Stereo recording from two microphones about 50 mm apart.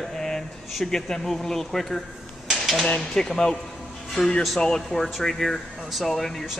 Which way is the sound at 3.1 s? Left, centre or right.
Centre.